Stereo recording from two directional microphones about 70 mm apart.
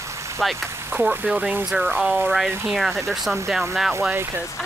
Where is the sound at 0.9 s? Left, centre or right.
Right.